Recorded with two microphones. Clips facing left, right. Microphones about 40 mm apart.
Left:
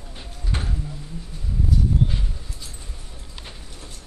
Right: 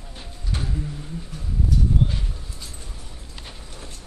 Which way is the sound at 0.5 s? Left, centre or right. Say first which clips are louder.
Even; left.